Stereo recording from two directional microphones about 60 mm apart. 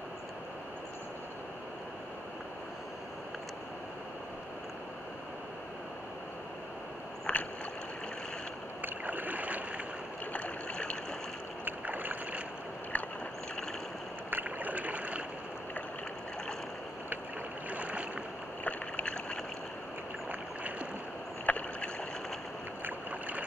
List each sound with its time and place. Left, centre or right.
7.3 s rowboat: left
8.8 s rowboat: right
10.3 s stream: left
11.6 s rowboat: right
12.9 s vehicle: left
14.3 s boat: right
17.6 s boat: right
18.6 s rowboat: left
21.5 s rowboat: left